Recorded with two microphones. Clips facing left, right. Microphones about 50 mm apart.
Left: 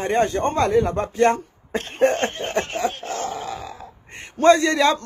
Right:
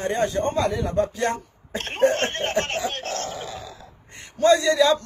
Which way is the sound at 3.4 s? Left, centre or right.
Left.